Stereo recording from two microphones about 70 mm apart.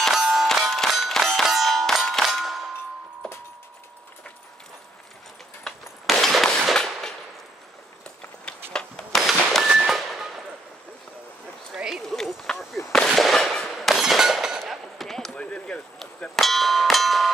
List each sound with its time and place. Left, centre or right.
0.0 s clang: centre
6.0 s gunshot: centre
8.7 s a sound: centre
9.2 s a sound: centre
11.7 s clip-clop: centre
12.9 s fireworks: centre
14.6 s gunshot: centre
15.3 s a sound: centre
16.3 s bell: centre